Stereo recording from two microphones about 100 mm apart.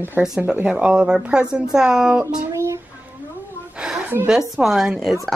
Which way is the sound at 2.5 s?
30° right (ahead or behind).